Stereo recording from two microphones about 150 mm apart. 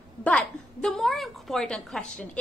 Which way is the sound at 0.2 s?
5° left (ahead or behind).